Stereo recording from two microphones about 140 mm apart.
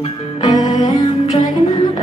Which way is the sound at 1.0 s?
40° left (ahead or behind).